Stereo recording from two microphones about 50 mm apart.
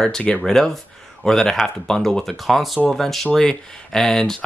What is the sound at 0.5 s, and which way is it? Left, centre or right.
Speech, centre.